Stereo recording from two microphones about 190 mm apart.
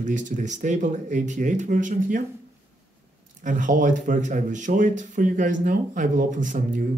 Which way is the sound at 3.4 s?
40° right (ahead or behind).